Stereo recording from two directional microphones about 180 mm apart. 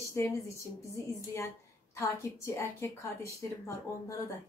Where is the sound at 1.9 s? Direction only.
15° left (ahead or behind).